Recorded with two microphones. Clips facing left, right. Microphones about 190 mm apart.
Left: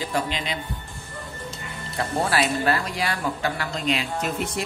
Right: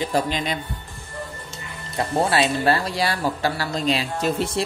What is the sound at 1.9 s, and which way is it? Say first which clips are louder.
Speech: right 3 dB; 25° right (ahead or behind).